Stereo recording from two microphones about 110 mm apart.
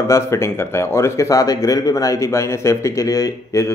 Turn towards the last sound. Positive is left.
turn(degrees=30)  # may be behind; listen again after turning